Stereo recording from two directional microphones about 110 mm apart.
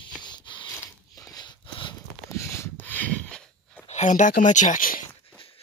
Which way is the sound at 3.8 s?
90° left.